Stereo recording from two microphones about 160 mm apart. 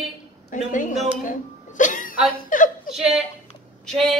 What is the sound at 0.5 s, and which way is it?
Speech, 55° left (ahead or behind).